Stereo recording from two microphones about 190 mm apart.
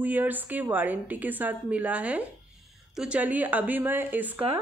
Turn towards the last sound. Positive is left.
turn(degrees=-10)  # may be behind; listen again after turning